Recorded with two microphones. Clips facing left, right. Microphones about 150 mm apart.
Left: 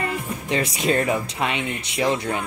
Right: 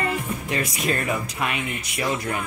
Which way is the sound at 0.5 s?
25° left (ahead or behind).